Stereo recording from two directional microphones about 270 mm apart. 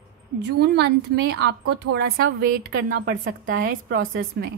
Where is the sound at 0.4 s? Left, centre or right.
Right.